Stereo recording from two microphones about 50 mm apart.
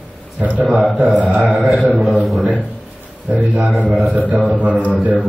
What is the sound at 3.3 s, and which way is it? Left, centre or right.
A man's voice, right.